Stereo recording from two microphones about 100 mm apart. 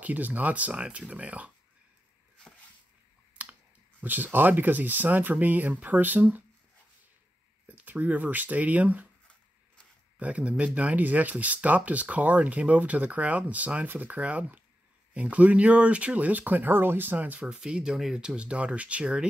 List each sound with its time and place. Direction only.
0.0 s speech: 15° right (ahead or behind)
3.4 s clicking: 15° right (ahead or behind)
4.0 s speech: 15° right (ahead or behind)
7.6 s speech: 15° right (ahead or behind)
10.1 s speech: 15° right (ahead or behind)